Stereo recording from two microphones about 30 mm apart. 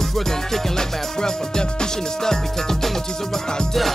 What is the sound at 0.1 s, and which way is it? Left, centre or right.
Music, centre.